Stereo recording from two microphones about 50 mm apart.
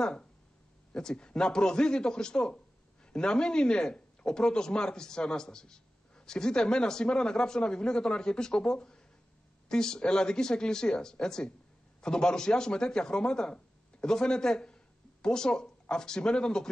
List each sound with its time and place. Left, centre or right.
0.0 s speech: centre